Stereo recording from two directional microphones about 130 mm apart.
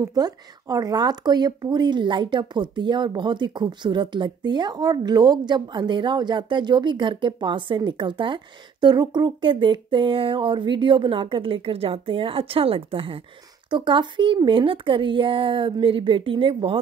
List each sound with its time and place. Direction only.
0.0 s speech: 30° right (ahead or behind)